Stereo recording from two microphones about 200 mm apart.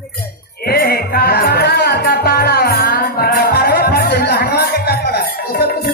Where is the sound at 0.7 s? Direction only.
50° left (ahead or behind).